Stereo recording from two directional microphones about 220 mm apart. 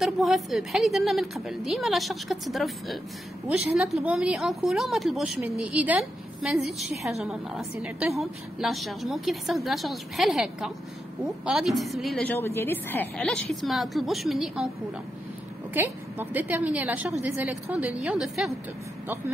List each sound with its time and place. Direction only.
0.0 s a woman's voice: centre (ahead or behind)
15.7 s a woman's voice: 10° right (ahead or behind)